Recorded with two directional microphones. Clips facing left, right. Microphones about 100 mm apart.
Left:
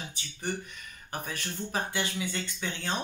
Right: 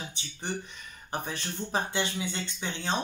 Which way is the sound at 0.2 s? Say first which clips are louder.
Left 2 dB; 25° right (ahead or behind).